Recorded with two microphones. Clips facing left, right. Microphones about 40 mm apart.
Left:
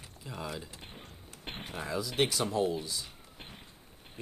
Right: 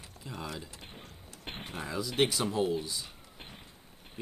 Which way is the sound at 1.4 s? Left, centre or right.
Centre.